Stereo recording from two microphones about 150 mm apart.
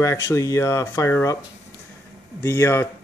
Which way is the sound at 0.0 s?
20° left (ahead or behind).